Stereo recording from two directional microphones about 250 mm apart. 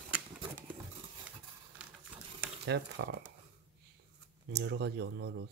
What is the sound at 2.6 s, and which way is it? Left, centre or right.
Speech, right.